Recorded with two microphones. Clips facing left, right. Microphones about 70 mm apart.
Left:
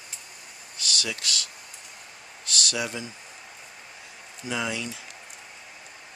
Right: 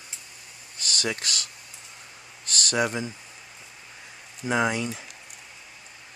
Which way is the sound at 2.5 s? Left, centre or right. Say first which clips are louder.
Right 4 dB; right.